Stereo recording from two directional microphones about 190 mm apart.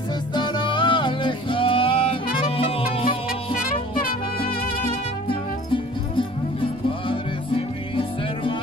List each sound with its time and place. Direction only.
0.3 s music: 25° left (ahead or behind)
3.6 s music: 50° left (ahead or behind)
5.7 s music: 25° left (ahead or behind)